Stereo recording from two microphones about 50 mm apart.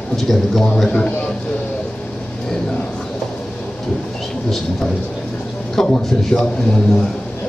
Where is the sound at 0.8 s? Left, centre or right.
Left.